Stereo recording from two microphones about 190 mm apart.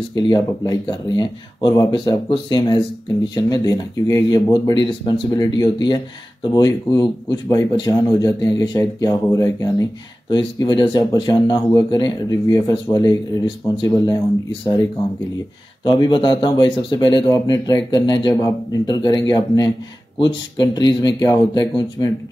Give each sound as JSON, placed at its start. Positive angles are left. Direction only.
{"t": 0.1, "sound": "speech", "side_deg": 20}
{"t": 15.8, "sound": "speech", "side_deg": 25}